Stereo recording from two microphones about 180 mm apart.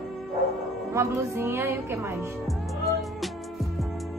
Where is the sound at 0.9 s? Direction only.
15° right (ahead or behind).